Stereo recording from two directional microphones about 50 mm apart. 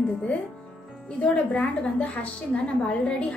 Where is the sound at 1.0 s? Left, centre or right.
Left.